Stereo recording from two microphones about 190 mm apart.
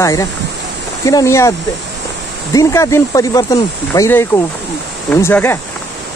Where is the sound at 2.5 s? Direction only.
15° left (ahead or behind).